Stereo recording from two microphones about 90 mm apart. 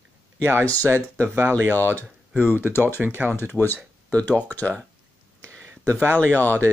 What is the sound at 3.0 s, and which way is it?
Speech, 20° right (ahead or behind).